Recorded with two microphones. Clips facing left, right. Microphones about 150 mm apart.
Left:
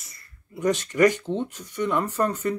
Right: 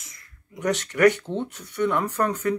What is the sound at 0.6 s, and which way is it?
Speech, 65° right (ahead or behind).